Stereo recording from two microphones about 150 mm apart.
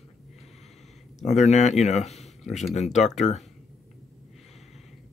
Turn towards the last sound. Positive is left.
turn(degrees=50)  # may be behind; listen again after turning